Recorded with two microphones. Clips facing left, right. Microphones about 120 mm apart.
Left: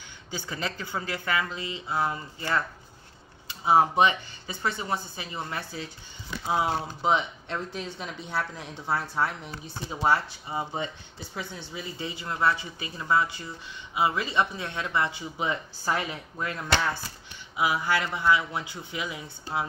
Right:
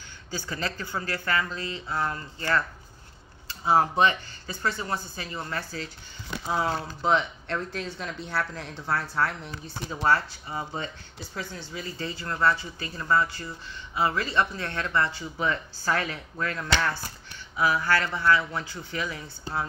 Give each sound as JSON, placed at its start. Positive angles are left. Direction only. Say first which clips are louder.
{"t": 0.3, "sound": "speech", "louder": "right 1 dB", "side_deg": 15}